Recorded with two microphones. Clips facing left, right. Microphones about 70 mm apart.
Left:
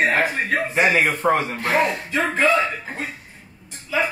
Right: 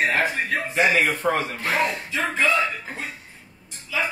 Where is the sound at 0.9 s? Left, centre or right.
Left.